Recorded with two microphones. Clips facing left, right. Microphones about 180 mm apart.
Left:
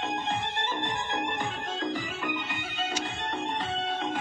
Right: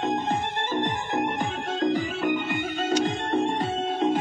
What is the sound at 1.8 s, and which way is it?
Organ, 45° right (ahead or behind).